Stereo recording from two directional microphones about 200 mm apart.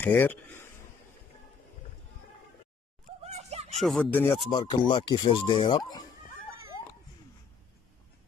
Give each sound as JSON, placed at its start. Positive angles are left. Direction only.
{"t": 0.0, "sound": "speech", "side_deg": 10}
{"t": 3.2, "sound": "a sound", "side_deg": -35}
{"t": 3.7, "sound": "speech", "side_deg": 0}
{"t": 4.5, "sound": "speech", "side_deg": 20}